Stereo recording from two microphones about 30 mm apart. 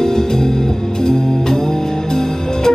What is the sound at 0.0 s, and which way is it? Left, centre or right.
Music, centre.